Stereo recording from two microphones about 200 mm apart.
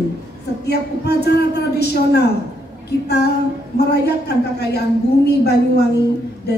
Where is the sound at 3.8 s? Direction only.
55° left (ahead or behind).